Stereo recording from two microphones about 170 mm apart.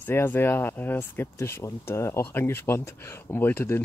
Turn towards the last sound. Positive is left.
turn(degrees=10)  # may be behind; listen again after turning